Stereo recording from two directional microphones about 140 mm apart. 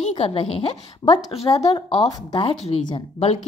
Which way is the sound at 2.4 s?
45° left (ahead or behind).